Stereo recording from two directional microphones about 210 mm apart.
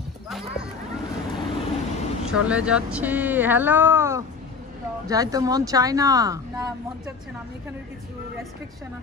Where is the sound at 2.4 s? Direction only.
5° right (ahead or behind).